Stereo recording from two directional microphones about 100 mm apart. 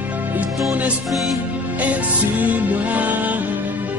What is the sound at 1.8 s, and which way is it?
Music, 15° right (ahead or behind).